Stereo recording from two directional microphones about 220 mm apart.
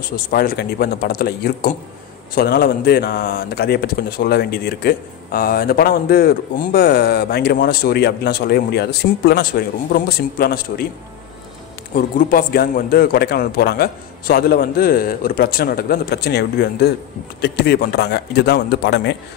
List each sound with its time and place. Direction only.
0.3 s speech: 45° left (ahead or behind)
11.9 s speech: 40° left (ahead or behind)